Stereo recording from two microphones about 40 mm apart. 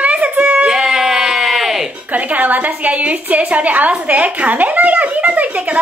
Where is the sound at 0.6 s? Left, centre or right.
Centre.